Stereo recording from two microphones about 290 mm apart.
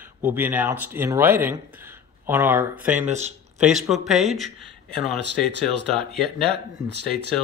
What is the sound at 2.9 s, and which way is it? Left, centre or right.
Speech, right.